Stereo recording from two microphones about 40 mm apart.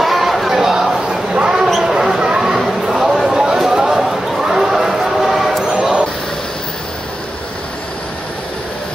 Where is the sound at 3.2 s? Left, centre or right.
Centre.